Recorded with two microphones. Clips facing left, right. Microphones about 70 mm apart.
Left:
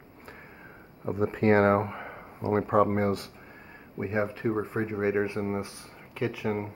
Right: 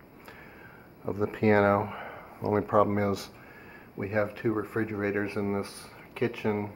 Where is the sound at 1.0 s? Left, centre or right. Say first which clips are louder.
Left 1 dB; centre.